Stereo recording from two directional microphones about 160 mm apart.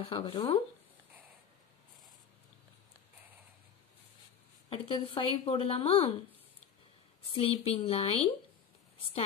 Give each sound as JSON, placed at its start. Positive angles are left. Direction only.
{"t": 0.0, "sound": "speech", "side_deg": 30}
{"t": 4.6, "sound": "speech", "side_deg": 35}
{"t": 7.3, "sound": "speech", "side_deg": 40}